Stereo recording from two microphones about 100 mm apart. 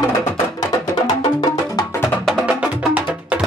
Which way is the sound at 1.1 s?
40° left (ahead or behind).